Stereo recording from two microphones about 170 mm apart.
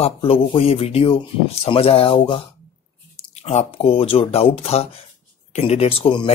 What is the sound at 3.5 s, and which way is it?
Speech, 35° left (ahead or behind).